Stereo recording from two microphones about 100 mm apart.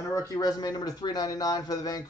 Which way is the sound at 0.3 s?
40° left (ahead or behind).